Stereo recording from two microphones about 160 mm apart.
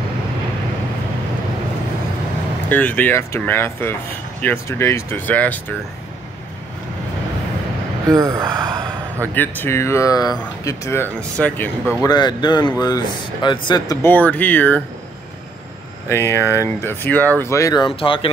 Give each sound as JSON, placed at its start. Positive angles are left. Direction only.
{"t": 2.7, "sound": "speech", "side_deg": 10}
{"t": 8.1, "sound": "speech", "side_deg": -20}
{"t": 9.3, "sound": "speech", "side_deg": 10}
{"t": 12.0, "sound": "speech", "side_deg": 25}
{"t": 14.0, "sound": "speech", "side_deg": 10}
{"t": 16.1, "sound": "speech", "side_deg": 15}